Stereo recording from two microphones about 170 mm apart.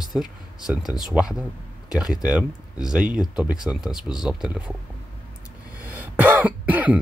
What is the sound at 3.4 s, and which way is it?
Speech, 5° right (ahead or behind).